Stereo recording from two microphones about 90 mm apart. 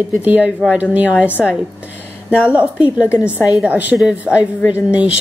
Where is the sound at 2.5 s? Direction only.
15° right (ahead or behind).